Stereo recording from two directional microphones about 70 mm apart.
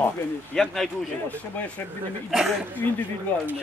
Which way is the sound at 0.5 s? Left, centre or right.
Centre.